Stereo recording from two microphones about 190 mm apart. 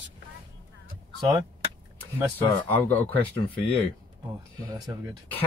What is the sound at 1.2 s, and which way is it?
Speech, 20° right (ahead or behind).